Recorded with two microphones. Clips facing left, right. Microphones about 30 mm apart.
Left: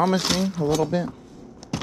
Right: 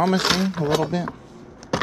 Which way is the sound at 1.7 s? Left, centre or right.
Right.